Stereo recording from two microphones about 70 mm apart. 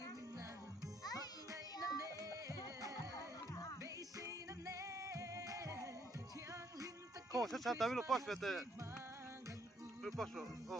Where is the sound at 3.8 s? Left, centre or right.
Right.